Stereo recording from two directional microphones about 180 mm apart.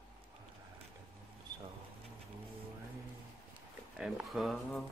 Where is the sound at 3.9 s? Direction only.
5° right (ahead or behind).